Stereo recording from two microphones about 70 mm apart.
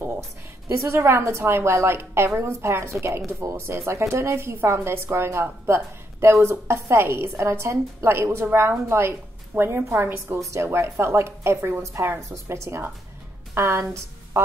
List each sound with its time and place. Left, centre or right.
0.7 s a woman's voice: right
14.3 s music: right